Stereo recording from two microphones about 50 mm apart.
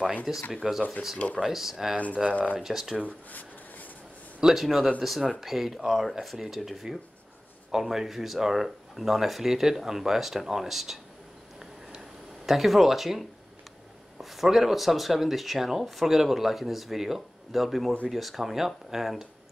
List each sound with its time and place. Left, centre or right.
0.3 s speech: centre
1.1 s speech: left
1.4 s speech: centre
3.1 s a sound: left
4.4 s speech: centre
12.4 s speech: centre
14.3 s speech: centre